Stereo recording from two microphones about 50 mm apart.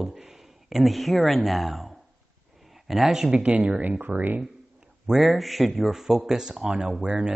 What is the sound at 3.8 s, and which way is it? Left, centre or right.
Speech, right.